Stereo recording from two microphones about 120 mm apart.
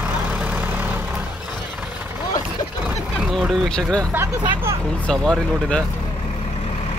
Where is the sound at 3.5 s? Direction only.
5° left (ahead or behind).